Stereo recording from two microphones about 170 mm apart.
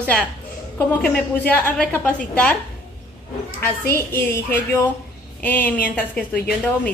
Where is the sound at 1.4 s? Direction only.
10° left (ahead or behind).